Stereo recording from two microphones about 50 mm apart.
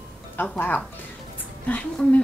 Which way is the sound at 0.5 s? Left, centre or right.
Left.